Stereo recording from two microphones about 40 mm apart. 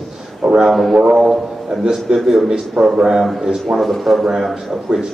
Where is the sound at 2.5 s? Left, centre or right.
Right.